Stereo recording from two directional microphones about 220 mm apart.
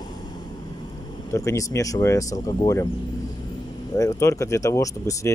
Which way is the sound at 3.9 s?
15° left (ahead or behind).